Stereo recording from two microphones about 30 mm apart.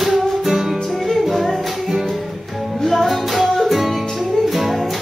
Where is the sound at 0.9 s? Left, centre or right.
Centre.